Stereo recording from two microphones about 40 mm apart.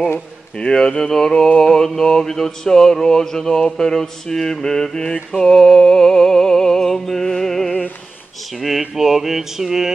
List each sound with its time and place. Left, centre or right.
0.6 s speech: left
1.1 s mantra: centre
5.4 s music: centre
8.5 s a sound: centre